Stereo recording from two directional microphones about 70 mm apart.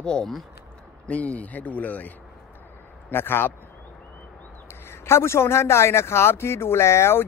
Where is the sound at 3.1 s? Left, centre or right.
Left.